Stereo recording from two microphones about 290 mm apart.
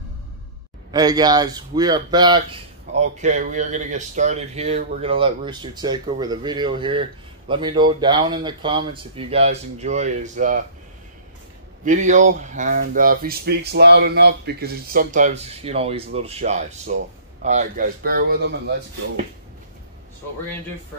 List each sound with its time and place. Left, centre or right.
0.9 s speech: centre
11.8 s a man's voice: right